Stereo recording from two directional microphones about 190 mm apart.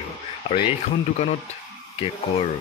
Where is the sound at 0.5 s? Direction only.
30° left (ahead or behind).